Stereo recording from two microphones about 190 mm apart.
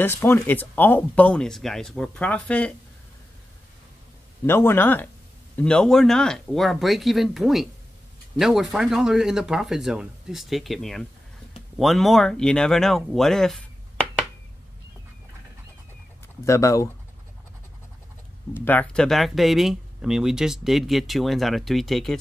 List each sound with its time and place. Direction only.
0.0 s speech: 10° left (ahead or behind)
4.5 s speech: 10° left (ahead or behind)
16.4 s speech: 15° left (ahead or behind)
18.5 s speech: 10° left (ahead or behind)